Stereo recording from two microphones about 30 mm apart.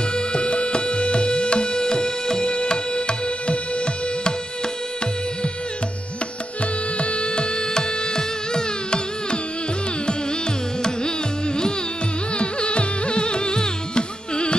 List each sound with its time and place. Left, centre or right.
0.1 s music: left
7.0 s music: left
10.8 s carnatic music: left
12.4 s music: left